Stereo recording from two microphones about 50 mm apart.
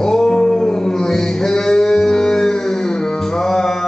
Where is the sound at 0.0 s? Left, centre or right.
Centre.